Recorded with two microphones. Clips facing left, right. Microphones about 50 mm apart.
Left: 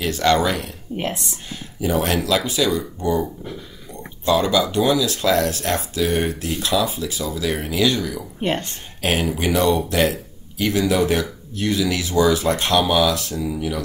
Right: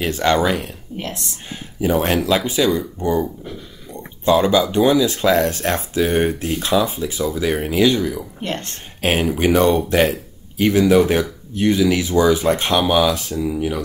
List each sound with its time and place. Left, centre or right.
0.0 s speech: right
0.9 s speech: left
1.8 s speech: right
8.4 s speech: centre
9.0 s speech: right